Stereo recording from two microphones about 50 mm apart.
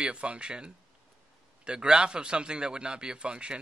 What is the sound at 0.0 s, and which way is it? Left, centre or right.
A man's voice, right.